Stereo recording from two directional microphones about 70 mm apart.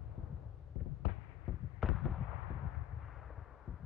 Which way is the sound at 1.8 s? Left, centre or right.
Centre.